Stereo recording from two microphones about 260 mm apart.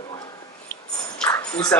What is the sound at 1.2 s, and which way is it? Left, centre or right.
Music, centre.